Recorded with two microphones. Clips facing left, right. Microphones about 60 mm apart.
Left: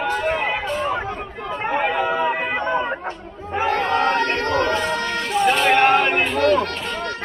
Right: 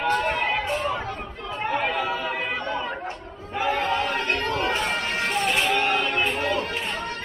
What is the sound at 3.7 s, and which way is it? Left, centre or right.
Chatter, left.